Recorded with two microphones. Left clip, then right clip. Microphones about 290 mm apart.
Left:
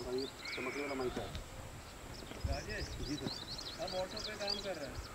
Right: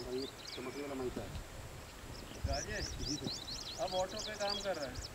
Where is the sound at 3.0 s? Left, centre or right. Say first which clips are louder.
Right 1 dB; centre.